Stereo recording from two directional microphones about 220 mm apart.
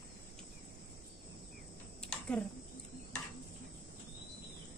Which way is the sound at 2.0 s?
5° left (ahead or behind).